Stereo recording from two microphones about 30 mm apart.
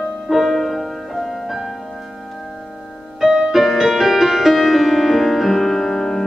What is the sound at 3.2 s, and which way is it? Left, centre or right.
Music, centre.